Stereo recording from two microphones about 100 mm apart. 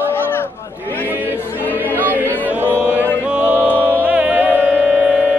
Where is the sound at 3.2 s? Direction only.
15° right (ahead or behind).